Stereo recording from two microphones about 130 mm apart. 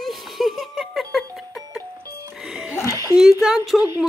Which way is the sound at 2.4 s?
5° right (ahead or behind).